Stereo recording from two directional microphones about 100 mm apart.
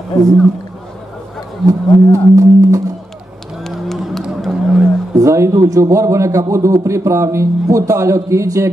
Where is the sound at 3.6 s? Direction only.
5° left (ahead or behind).